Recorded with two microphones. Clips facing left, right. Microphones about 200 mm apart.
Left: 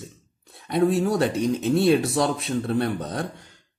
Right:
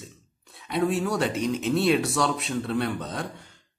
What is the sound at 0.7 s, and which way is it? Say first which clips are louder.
Speech: left 4 dB; 35° left (ahead or behind).